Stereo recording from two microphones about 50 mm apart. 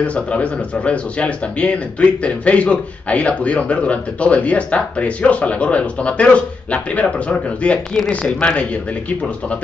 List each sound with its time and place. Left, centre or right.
0.0 s speech: left